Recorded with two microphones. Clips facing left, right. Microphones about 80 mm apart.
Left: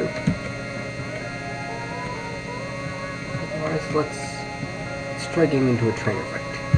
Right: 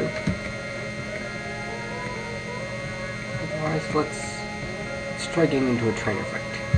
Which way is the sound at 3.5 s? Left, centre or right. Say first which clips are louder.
Left 1 dB; centre.